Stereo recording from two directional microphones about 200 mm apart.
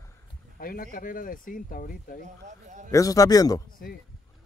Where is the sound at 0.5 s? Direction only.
45° left (ahead or behind).